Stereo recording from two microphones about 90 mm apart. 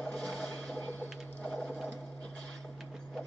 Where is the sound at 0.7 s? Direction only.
20° left (ahead or behind).